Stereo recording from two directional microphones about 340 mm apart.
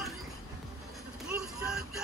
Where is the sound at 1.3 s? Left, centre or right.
Centre.